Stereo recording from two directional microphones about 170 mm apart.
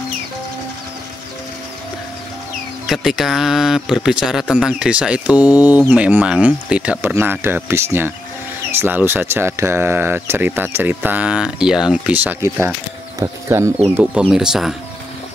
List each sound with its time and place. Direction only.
2.9 s speech: centre (ahead or behind)